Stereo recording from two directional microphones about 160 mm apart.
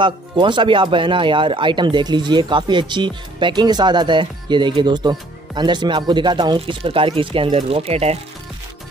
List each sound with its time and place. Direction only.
0.0 s speech: 30° right (ahead or behind)